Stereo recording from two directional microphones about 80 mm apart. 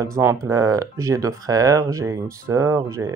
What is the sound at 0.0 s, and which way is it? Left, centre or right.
Speech, right.